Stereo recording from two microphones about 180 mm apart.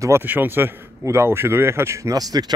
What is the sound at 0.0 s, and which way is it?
A man's voice, 10° right (ahead or behind).